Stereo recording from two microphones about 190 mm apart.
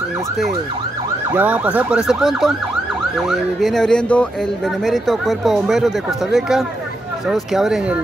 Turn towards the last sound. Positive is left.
turn(degrees=0)  # may be behind; listen again after turning